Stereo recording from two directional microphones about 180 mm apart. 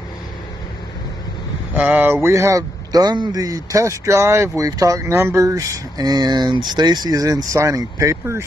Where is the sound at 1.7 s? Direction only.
10° right (ahead or behind).